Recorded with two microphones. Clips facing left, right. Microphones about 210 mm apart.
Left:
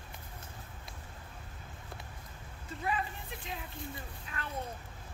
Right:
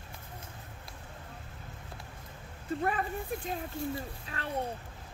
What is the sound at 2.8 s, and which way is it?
Speech, 50° right (ahead or behind).